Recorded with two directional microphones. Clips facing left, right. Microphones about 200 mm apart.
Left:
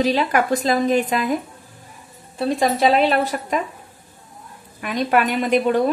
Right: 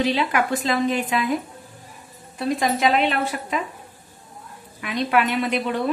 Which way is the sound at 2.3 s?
30° left (ahead or behind).